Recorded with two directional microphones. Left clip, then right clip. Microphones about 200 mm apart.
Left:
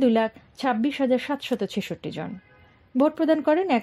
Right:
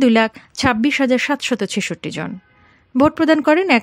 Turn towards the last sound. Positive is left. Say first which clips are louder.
# right 7 dB
turn(degrees=-20)  # may be behind; listen again after turning